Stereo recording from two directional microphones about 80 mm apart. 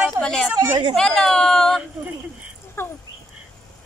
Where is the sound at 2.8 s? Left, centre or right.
Left.